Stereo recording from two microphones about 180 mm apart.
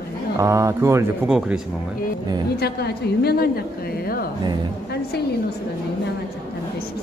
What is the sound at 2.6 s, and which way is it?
A woman's voice, 65° left (ahead or behind).